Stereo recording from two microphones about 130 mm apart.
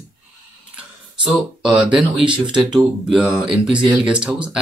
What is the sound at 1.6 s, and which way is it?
Speech, 5° right (ahead or behind).